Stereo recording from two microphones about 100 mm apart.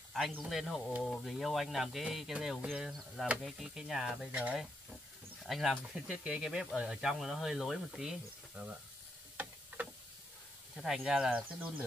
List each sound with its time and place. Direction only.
0.5 s speech: centre (ahead or behind)
10.8 s speech: 5° right (ahead or behind)